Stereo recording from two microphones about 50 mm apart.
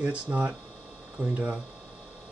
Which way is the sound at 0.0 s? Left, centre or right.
Right.